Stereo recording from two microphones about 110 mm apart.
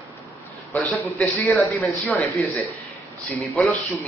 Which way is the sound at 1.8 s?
Centre (ahead or behind).